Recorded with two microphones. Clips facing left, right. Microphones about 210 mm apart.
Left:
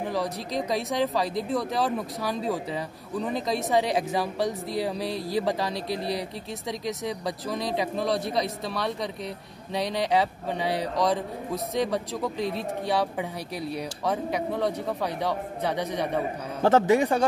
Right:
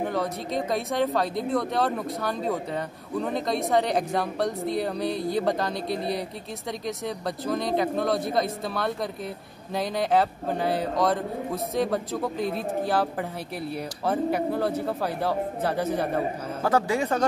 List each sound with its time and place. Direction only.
0.0 s a man's voice: centre (ahead or behind)
16.6 s speech: 20° left (ahead or behind)